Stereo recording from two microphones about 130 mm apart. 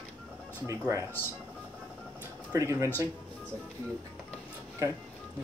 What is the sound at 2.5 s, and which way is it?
Speech, 20° right (ahead or behind).